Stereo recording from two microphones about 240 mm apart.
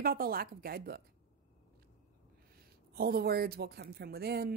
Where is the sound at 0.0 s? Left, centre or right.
Right.